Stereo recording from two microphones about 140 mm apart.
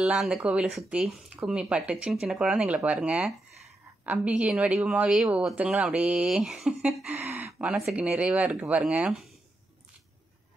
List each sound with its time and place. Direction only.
0.0 s speech: 5° right (ahead or behind)